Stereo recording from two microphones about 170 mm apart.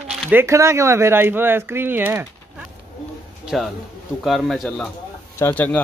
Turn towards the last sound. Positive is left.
turn(degrees=10)  # may be behind; listen again after turning